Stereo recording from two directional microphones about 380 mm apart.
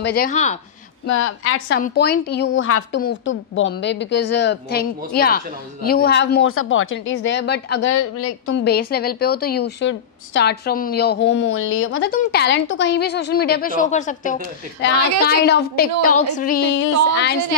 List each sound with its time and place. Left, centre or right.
0.0 s speech: left
1.0 s a woman's voice: left